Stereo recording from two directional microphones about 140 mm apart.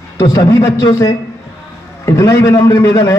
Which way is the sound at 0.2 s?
25° left (ahead or behind).